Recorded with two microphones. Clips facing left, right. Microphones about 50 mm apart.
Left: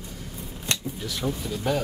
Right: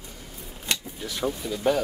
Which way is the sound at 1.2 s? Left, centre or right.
Right.